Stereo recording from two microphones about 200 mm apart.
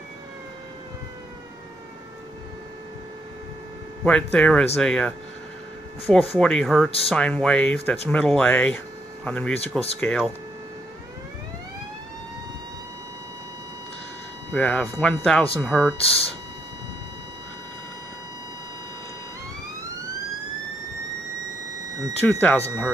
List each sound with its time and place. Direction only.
4.0 s speech: 5° left (ahead or behind)
9.6 s speech: 30° left (ahead or behind)
9.9 s speech: 5° left (ahead or behind)
14.5 s speech: 5° left (ahead or behind)
16.0 s speech: 30° left (ahead or behind)
22.2 s speech: 5° left (ahead or behind)